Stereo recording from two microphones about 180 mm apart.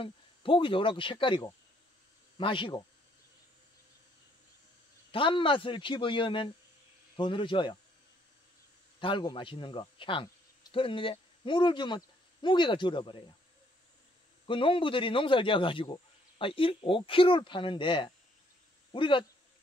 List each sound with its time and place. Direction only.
0.0 s a man's voice: 30° left (ahead or behind)
5.1 s a man's voice: 30° left (ahead or behind)
9.0 s speech: 25° left (ahead or behind)
14.4 s a man's voice: 30° left (ahead or behind)